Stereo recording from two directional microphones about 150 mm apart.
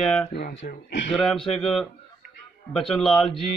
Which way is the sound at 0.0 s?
5° left (ahead or behind).